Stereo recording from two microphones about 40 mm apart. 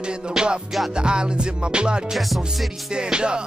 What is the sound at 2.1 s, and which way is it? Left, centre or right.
Music, centre.